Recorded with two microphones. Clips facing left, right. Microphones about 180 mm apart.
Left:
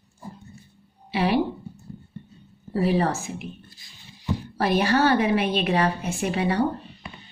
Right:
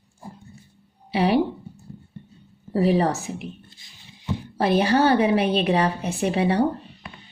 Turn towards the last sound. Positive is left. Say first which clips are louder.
# right 3 dB
turn(degrees=-30)  # may be behind; listen again after turning